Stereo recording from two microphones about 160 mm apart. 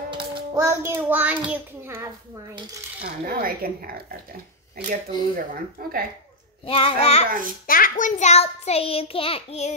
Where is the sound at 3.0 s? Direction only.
70° right (ahead or behind).